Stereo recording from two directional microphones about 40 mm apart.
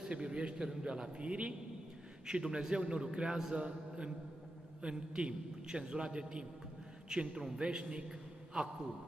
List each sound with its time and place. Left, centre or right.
0.1 s a man's voice: right
0.7 s a man's voice: centre